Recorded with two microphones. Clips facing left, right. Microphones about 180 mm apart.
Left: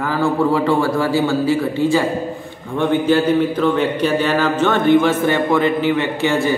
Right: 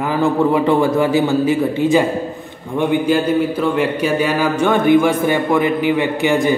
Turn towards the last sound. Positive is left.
turn(degrees=-15)  # may be behind; listen again after turning